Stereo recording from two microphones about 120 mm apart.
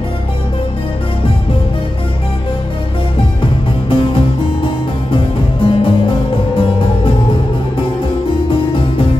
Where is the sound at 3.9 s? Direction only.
45° left (ahead or behind).